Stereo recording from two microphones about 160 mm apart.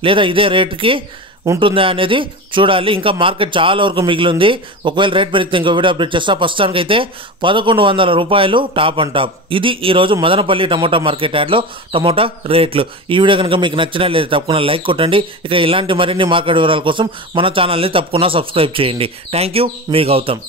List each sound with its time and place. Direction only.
0.0 s a man's voice: 35° right (ahead or behind)